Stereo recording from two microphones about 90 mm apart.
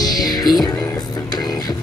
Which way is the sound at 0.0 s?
45° left (ahead or behind).